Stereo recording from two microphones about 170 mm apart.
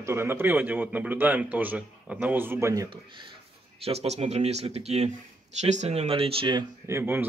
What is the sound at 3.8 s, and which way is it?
Speech, 35° right (ahead or behind).